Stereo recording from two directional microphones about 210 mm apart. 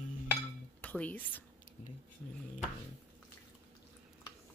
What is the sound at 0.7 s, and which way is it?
Speech, 5° left (ahead or behind).